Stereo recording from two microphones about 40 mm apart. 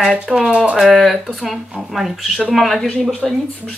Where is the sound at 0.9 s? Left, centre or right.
Centre.